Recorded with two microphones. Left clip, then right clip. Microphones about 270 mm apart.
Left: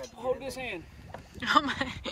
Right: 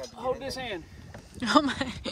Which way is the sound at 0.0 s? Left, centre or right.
Right.